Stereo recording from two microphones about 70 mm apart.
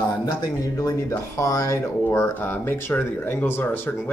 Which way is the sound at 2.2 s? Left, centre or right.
Left.